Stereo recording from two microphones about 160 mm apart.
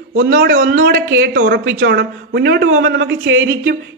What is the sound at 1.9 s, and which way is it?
Speech, 90° right.